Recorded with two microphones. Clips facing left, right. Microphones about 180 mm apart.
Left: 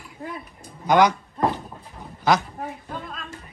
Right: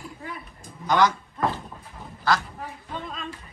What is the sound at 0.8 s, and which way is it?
Speech, 20° left (ahead or behind).